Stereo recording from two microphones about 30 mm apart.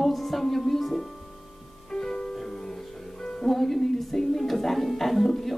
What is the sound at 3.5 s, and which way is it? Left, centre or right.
A woman's voice, centre.